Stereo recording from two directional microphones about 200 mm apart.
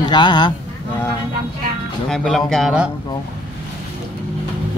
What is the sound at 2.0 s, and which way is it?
Speech, 5° left (ahead or behind).